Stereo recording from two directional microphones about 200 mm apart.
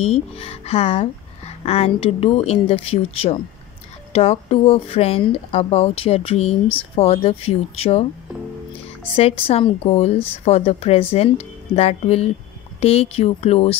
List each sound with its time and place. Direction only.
0.0 s speech: 30° left (ahead or behind)
9.1 s speech: 30° left (ahead or behind)